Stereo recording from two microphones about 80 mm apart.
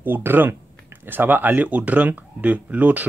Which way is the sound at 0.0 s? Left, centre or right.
Right.